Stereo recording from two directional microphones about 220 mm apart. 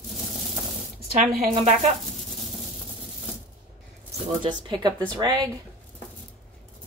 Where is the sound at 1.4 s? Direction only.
30° right (ahead or behind).